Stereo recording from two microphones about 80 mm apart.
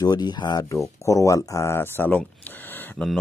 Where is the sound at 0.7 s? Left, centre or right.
Left.